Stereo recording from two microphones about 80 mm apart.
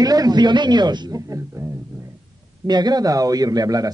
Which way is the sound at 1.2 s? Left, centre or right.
Right.